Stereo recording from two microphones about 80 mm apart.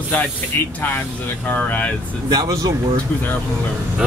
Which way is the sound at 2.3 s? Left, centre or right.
Right.